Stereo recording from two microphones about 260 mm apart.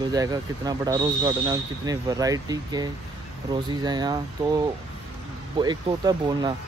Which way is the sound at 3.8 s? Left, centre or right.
Centre.